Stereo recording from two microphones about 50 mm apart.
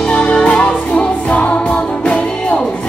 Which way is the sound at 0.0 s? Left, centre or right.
Left.